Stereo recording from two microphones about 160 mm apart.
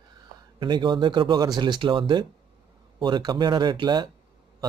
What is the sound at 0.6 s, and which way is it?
A man's voice, 30° right (ahead or behind).